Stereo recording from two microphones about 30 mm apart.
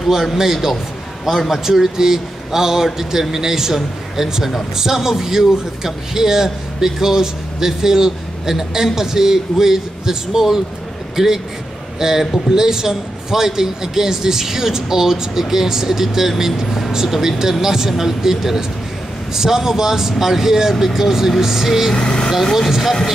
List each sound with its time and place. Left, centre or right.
0.4 s a man's voice: centre
4.7 s a man's voice: centre
21.9 s speech: left
22.4 s speech: centre